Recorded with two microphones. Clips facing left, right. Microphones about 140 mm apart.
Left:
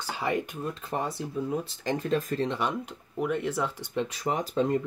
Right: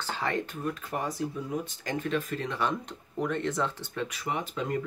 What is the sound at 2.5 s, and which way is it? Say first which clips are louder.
Speech: left 1 dB; 15° left (ahead or behind).